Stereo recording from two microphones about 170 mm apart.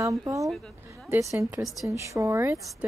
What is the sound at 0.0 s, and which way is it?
Speech, 20° right (ahead or behind).